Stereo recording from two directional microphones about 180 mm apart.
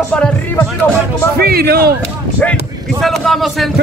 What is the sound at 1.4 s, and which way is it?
Speech, 60° right (ahead or behind).